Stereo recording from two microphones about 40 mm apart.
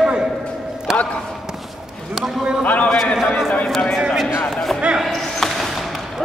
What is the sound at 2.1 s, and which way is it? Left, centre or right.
A man's voice, centre.